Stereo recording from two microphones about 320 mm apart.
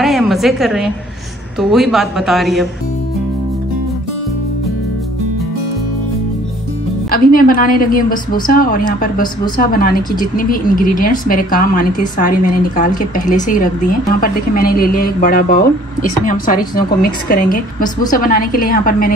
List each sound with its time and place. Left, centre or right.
0.0 s a sound: centre
1.6 s speech: centre
7.1 s a woman's voice: left